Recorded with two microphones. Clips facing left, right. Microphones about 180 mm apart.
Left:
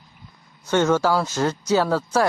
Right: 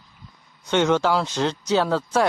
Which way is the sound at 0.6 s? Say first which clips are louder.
Left 1 dB; 5° left (ahead or behind).